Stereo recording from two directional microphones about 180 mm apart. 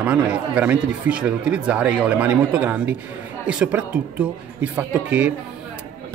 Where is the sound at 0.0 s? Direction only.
5° right (ahead or behind).